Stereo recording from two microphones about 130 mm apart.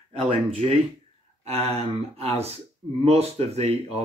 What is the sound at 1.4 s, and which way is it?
Speech, 55° right (ahead or behind).